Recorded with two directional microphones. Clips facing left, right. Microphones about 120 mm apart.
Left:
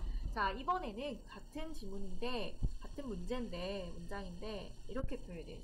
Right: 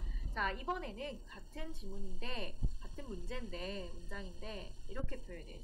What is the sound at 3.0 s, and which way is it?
A woman's voice, 20° left (ahead or behind).